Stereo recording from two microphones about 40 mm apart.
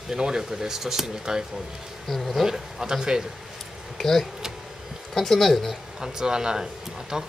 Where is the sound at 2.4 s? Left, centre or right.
Centre.